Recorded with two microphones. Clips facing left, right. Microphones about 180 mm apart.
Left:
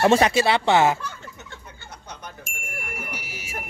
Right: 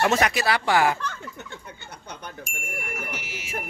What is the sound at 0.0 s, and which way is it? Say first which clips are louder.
Speech: left 5 dB; 30° left (ahead or behind).